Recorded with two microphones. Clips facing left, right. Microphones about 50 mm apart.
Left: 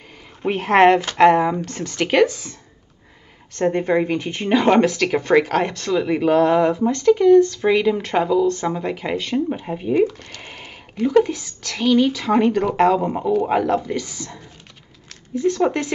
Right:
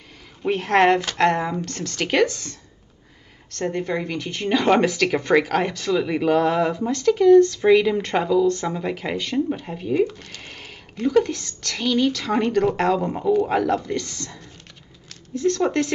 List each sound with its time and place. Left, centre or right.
0.4 s speech: centre
3.5 s speech: left
4.6 s speech: centre
10.1 s speech: centre